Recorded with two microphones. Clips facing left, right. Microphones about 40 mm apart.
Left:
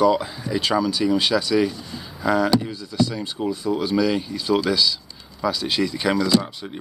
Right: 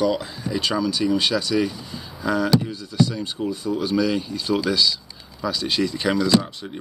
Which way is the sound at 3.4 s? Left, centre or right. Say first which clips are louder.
Left 2 dB; left.